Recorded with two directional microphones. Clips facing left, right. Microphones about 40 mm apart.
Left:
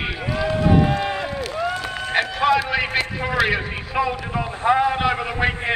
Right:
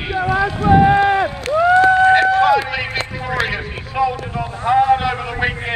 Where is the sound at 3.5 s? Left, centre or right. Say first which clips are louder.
Left 1 dB; centre.